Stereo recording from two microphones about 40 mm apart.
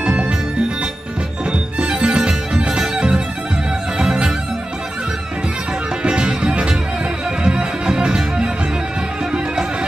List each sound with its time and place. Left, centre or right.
0.0 s music: right
1.9 s music: right
6.0 s music: right